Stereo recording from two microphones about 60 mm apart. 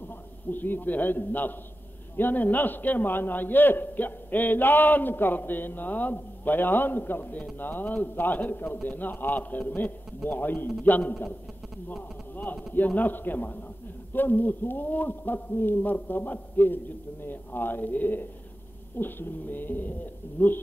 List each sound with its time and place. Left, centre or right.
0.5 s a man's voice: left